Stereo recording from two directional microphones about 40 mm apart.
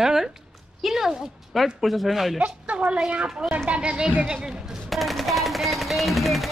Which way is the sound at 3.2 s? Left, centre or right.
Centre.